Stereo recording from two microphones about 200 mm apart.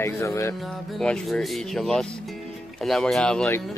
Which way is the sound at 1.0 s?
5° left (ahead or behind).